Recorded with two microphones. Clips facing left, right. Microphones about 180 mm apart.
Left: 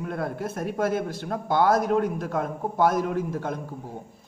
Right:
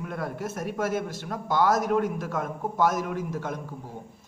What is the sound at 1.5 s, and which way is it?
A man's voice, 55° left (ahead or behind).